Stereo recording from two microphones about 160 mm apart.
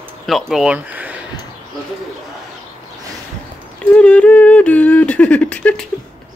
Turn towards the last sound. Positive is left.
turn(degrees=10)  # may be behind; listen again after turning